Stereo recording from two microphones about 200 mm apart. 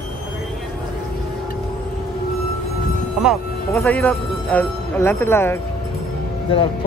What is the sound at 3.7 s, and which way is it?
Speech, 10° left (ahead or behind).